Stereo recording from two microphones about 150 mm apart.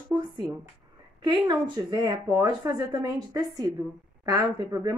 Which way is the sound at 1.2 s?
25° right (ahead or behind).